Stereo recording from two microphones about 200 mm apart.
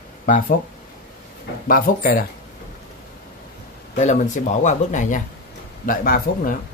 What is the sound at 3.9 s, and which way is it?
A man's voice, 35° left (ahead or behind).